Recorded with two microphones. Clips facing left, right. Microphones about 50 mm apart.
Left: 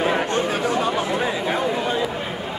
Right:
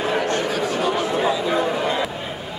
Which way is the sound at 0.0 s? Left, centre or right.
Left.